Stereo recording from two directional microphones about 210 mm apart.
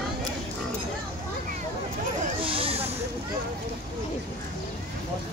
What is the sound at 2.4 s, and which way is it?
Snake, 25° right (ahead or behind).